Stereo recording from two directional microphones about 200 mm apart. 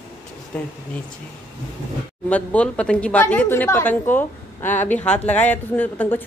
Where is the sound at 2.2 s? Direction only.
5° left (ahead or behind).